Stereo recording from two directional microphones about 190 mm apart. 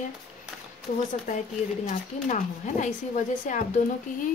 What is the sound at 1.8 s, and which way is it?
Speech, 40° left (ahead or behind).